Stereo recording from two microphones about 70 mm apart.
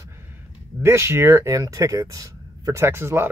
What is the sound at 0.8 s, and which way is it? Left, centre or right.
Speech, right.